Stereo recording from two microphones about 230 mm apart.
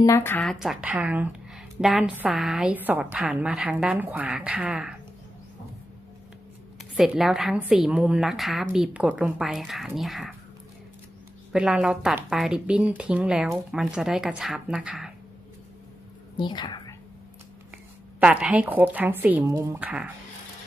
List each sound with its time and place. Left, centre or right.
0.0 s speech: centre
7.0 s speech: centre
11.5 s speech: centre
16.3 s a woman's voice: centre
18.2 s speech: centre